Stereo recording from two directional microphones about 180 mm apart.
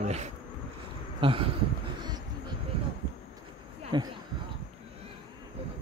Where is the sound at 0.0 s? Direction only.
40° right (ahead or behind).